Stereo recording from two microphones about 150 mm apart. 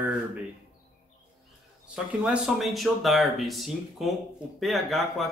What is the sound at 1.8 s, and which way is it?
Speech, 5° right (ahead or behind).